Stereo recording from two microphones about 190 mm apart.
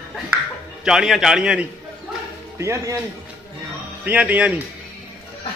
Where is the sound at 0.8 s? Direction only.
Centre (ahead or behind).